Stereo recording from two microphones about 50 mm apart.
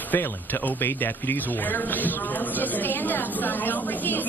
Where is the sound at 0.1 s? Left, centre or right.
Left.